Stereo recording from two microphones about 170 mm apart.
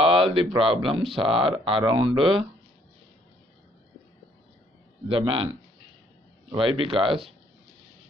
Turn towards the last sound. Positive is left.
turn(degrees=-30)  # may be behind; listen again after turning